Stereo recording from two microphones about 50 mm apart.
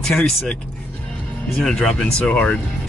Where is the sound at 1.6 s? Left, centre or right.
Centre.